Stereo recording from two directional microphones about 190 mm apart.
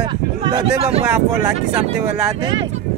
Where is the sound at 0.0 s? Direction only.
25° right (ahead or behind).